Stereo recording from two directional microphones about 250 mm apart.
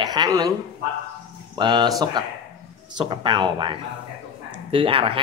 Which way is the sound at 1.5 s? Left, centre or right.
Centre.